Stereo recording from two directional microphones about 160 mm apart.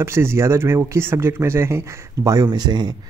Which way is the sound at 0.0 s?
15° right (ahead or behind).